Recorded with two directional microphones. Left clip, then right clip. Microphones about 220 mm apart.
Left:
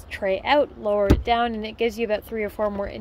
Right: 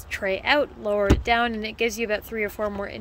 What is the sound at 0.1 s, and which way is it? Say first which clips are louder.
A woman's voice: left 1 dB; centre (ahead or behind).